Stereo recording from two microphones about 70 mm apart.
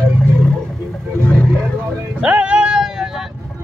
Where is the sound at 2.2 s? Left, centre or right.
Centre.